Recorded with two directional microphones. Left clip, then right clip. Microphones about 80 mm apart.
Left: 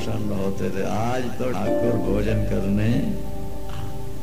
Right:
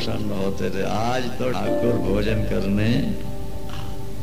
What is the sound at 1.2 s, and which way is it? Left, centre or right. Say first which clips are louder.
Speech: right 1 dB; left.